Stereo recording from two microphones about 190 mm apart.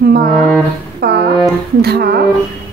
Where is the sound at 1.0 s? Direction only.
55° right (ahead or behind).